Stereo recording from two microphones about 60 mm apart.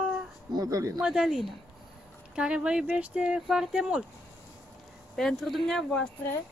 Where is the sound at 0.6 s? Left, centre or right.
Right.